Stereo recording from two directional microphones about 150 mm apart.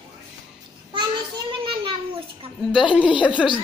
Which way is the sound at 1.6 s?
35° right (ahead or behind).